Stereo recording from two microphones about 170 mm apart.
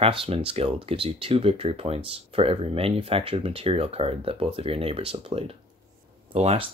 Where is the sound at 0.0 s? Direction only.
35° right (ahead or behind).